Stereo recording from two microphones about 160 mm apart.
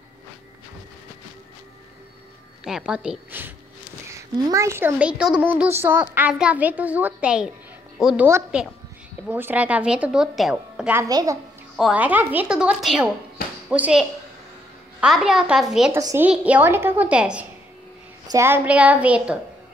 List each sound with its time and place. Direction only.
2.6 s a woman's voice: 5° right (ahead or behind)
11.1 s a child's voice: 25° right (ahead or behind)
11.7 s a woman's voice: 5° right (ahead or behind)
15.9 s a woman's voice: 15° right (ahead or behind)